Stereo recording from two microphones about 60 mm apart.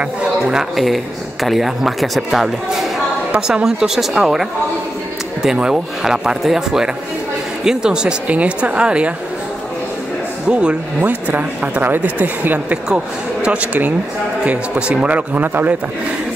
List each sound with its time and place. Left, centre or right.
0.0 s a man's voice: centre
11.0 s a man's voice: right
12.8 s a man's voice: centre; by 15.7 s right